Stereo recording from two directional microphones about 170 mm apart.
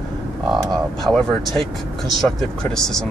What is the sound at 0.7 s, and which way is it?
Speech, centre (ahead or behind).